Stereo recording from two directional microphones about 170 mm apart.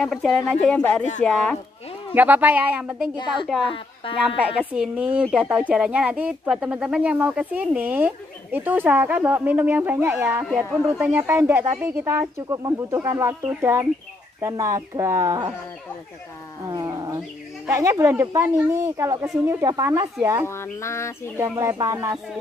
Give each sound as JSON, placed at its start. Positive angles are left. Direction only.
{"t": 0.0, "sound": "speech", "side_deg": 0}
{"t": 2.1, "sound": "speech", "side_deg": -10}
{"t": 3.7, "sound": "speech", "side_deg": 30}
{"t": 4.4, "sound": "speech", "side_deg": -5}
{"t": 16.6, "sound": "a sound", "side_deg": -25}
{"t": 17.6, "sound": "speech", "side_deg": -15}
{"t": 20.4, "sound": "speech", "side_deg": 15}
{"t": 21.4, "sound": "speech", "side_deg": -20}